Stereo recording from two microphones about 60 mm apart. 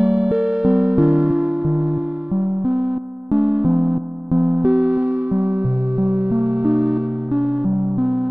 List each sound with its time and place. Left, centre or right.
0.0 s music: centre